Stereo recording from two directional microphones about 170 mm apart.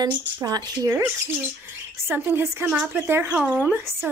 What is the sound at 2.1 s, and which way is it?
Speech, 15° right (ahead or behind).